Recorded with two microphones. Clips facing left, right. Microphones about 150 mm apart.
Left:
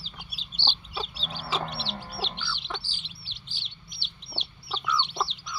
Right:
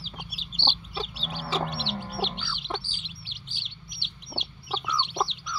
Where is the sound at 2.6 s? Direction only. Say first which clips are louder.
Right 4 dB; 50° right (ahead or behind).